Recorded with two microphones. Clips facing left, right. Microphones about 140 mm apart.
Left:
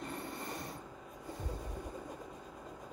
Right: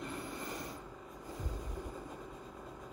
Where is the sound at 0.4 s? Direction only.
25° left (ahead or behind).